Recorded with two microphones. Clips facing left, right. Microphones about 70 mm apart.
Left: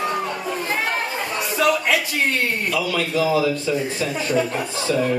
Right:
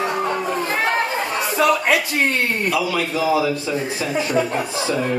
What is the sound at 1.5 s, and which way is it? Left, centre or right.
Speech, right.